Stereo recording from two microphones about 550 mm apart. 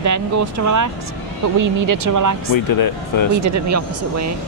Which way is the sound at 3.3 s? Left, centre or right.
Right.